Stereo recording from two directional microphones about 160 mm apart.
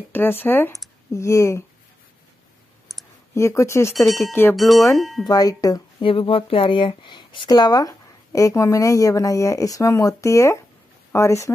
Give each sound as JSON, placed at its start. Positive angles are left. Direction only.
{"t": 0.1, "sound": "speech", "side_deg": 15}
{"t": 3.3, "sound": "speech", "side_deg": 15}
{"t": 3.9, "sound": "speech", "side_deg": 0}
{"t": 4.3, "sound": "speech", "side_deg": 15}
{"t": 4.6, "sound": "speech", "side_deg": 0}
{"t": 5.3, "sound": "speech", "side_deg": 25}